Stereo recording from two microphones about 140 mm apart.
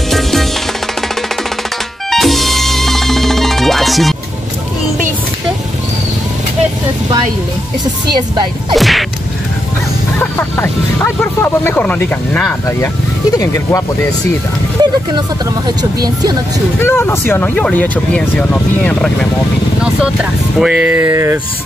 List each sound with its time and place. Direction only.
0.1 s music: centre (ahead or behind)
2.0 s music: centre (ahead or behind)
8.1 s speech: 30° right (ahead or behind)
8.7 s whip: centre (ahead or behind)
10.1 s music: 15° left (ahead or behind)
11.1 s speech: 15° left (ahead or behind)
13.4 s speech: 20° left (ahead or behind)
14.8 s speech: 30° right (ahead or behind)
16.8 s speech: 15° left (ahead or behind)
20.5 s speech: 5° right (ahead or behind)